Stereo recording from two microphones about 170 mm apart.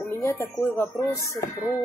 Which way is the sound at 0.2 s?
15° left (ahead or behind).